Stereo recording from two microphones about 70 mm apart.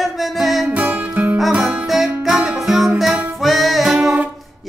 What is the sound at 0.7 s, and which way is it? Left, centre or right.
Music, right.